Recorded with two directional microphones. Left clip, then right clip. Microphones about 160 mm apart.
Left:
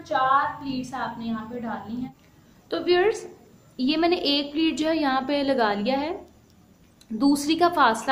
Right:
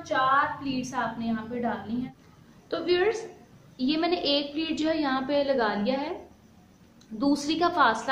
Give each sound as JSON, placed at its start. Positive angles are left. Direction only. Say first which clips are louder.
{"t": 0.0, "sound": "a woman's voice", "louder": "left 2 dB", "side_deg": 10}
{"t": 2.7, "sound": "a woman's voice", "louder": "left 3 dB", "side_deg": 65}
{"t": 7.2, "sound": "a woman's voice", "louder": "left 4 dB", "side_deg": 65}